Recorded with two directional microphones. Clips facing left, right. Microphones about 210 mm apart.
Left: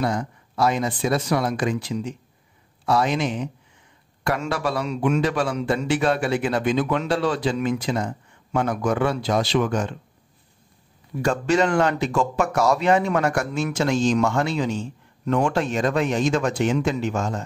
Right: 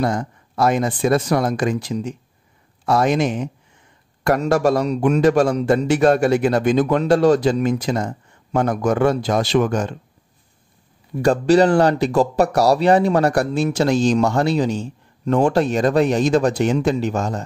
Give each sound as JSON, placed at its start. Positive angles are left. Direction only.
{"t": 0.0, "sound": "a man's voice", "side_deg": -45}
{"t": 11.2, "sound": "speech", "side_deg": -35}